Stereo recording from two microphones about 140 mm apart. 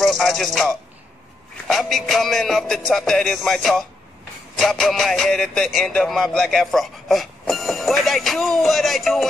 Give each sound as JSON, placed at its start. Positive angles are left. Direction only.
{"t": 0.0, "sound": "music", "side_deg": 0}
{"t": 1.7, "sound": "a man's voice", "side_deg": 0}